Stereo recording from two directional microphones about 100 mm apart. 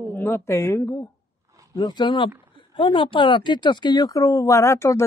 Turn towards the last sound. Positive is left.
turn(degrees=25)  # may be behind; listen again after turning